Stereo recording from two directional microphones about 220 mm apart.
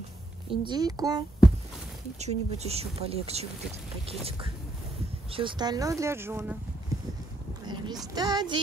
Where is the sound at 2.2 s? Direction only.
30° right (ahead or behind); by 6.5 s 10° right (ahead or behind).